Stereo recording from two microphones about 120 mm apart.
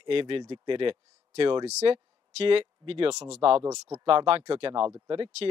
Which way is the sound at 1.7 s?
65° right (ahead or behind).